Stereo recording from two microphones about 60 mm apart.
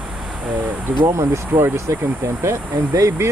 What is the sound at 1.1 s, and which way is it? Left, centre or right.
Speech, right.